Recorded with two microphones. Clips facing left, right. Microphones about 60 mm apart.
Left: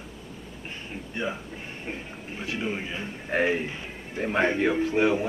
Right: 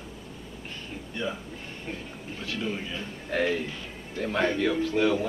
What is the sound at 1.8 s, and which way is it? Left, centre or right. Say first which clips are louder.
Speech: left 1 dB; left.